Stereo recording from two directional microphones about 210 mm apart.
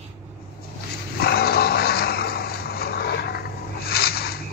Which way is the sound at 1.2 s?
50° left (ahead or behind).